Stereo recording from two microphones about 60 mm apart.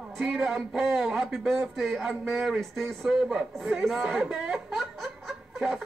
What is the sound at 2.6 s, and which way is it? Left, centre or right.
Speech, centre.